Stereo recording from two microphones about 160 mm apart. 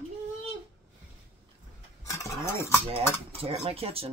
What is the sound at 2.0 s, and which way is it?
Stir, 20° left (ahead or behind).